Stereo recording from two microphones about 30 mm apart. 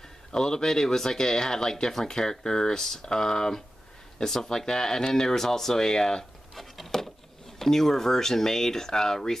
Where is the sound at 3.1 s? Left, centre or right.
Left.